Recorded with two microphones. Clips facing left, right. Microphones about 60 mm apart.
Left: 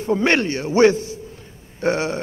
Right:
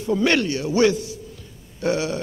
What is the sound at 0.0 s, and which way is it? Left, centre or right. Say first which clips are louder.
A man's voice: left 1 dB; left.